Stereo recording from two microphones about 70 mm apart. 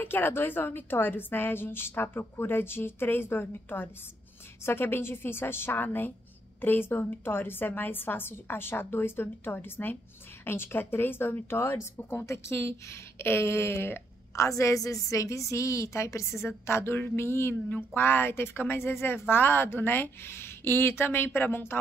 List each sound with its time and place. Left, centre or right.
0.0 s a woman's voice: left
14.3 s a woman's voice: left